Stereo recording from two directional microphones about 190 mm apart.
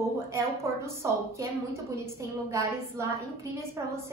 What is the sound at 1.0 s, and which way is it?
Speech, 15° right (ahead or behind).